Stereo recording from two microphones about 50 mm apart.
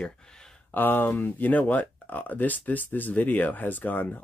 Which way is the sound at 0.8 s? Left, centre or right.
Left.